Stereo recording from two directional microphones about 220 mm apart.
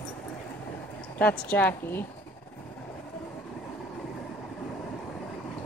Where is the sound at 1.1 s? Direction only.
5° left (ahead or behind).